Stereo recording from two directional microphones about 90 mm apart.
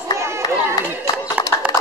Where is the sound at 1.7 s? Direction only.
45° left (ahead or behind).